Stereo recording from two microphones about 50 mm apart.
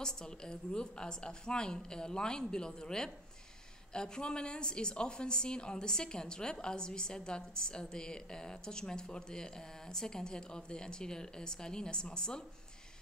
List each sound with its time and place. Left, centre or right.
0.0 s a woman's voice: centre